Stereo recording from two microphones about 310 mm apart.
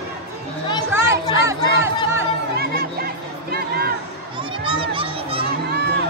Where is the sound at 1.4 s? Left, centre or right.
Centre.